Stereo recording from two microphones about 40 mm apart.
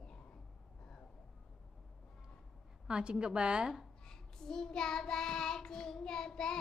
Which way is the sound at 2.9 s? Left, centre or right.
Right.